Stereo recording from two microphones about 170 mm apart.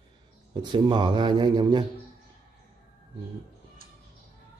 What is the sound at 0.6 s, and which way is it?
A man's voice, 25° right (ahead or behind).